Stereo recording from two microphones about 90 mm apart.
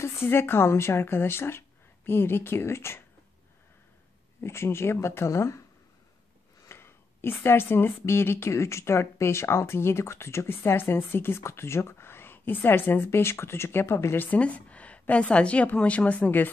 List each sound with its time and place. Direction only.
0.0 s speech: 25° left (ahead or behind)
4.4 s speech: 30° left (ahead or behind)
6.7 s speech: 25° left (ahead or behind)